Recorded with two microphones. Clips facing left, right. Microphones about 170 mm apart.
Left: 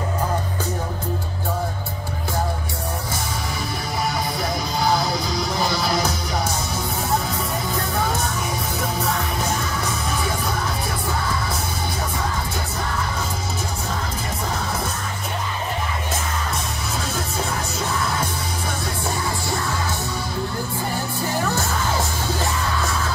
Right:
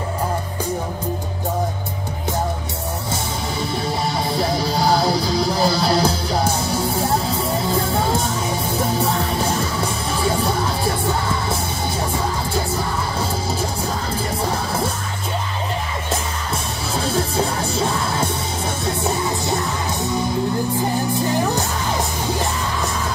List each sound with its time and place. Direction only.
4.4 s music: 30° right (ahead or behind)